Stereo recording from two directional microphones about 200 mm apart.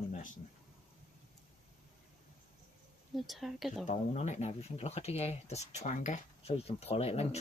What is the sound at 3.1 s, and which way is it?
Speech, centre (ahead or behind).